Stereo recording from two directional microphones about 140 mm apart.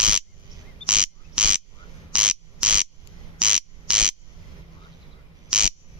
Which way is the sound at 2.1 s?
5° right (ahead or behind).